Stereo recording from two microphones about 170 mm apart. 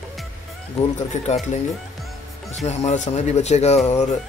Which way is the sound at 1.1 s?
45° left (ahead or behind).